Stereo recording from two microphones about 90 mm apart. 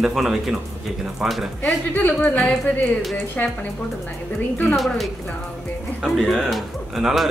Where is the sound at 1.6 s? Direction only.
20° left (ahead or behind).